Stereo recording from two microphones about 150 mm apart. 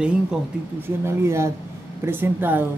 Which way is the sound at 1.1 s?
20° right (ahead or behind).